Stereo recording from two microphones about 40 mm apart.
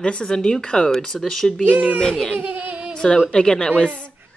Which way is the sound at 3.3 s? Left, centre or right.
Centre.